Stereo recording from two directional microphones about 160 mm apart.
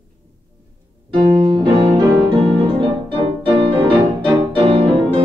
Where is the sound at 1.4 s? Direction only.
30° right (ahead or behind).